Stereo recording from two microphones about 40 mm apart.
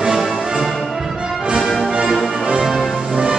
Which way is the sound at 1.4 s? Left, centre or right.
Centre.